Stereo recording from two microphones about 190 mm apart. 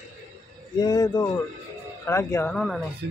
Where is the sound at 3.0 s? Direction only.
65° right (ahead or behind).